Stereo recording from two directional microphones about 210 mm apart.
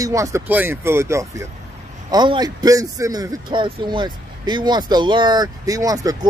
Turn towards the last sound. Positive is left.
turn(degrees=-15)  # may be behind; listen again after turning